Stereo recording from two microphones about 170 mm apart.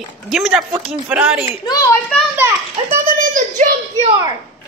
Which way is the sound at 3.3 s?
50° right (ahead or behind).